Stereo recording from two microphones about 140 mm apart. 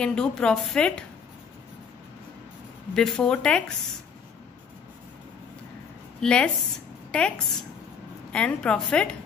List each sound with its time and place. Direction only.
0.0 s a woman's voice: 5° left (ahead or behind)
2.9 s a woman's voice: 5° left (ahead or behind)
6.2 s a woman's voice: 5° left (ahead or behind)